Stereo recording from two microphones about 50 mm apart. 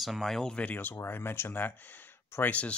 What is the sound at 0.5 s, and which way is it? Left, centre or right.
Speech, left.